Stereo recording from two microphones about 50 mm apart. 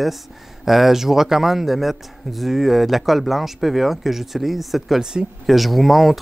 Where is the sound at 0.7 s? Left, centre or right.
Centre.